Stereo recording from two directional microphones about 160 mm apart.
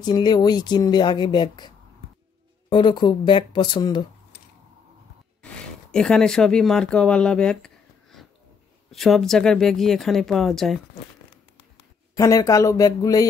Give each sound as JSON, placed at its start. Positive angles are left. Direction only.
{"t": 0.0, "sound": "speech", "side_deg": 25}
{"t": 2.7, "sound": "speech", "side_deg": 30}
{"t": 5.4, "sound": "speech", "side_deg": 5}
{"t": 12.2, "sound": "speech", "side_deg": 20}